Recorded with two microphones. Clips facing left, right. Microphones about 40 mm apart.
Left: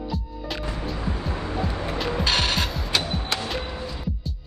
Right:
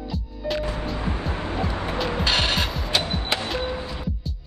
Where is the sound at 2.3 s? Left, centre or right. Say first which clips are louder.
Right 1 dB; right.